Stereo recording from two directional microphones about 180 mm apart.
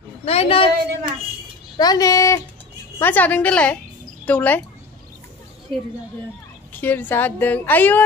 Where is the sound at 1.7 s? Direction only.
20° left (ahead or behind).